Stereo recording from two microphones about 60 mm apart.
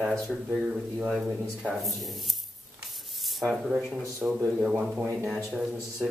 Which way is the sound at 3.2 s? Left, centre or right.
Centre.